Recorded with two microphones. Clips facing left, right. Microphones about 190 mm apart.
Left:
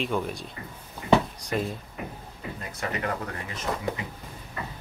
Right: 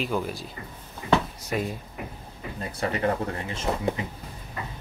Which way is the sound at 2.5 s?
30° right (ahead or behind).